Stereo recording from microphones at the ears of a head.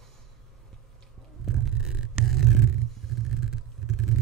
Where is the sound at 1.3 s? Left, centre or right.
Right.